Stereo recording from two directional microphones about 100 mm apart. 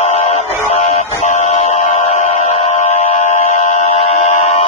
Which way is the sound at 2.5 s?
90° left.